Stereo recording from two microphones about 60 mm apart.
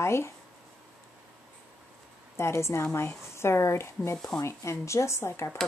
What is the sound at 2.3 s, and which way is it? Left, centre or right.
Speech, left.